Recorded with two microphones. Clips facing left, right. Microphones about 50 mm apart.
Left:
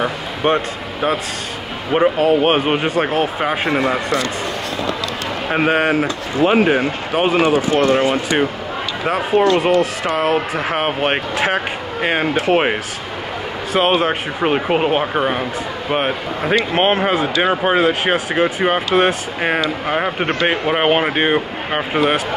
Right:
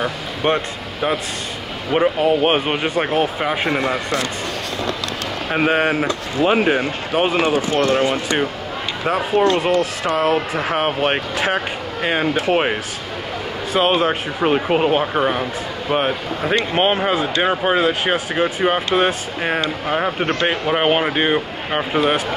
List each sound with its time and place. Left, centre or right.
0.4 s speech: left
1.9 s speech: centre
5.5 s speech: centre
13.7 s speech: centre